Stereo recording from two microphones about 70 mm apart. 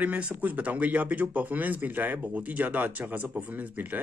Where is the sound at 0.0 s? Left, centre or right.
Right.